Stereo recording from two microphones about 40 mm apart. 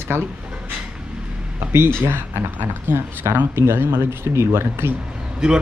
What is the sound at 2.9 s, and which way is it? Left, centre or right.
Speech, right.